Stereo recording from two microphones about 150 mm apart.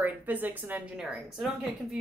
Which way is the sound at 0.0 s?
10° right (ahead or behind).